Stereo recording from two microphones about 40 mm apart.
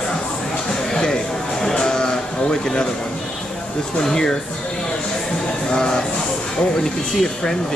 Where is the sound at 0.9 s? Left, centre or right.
Centre.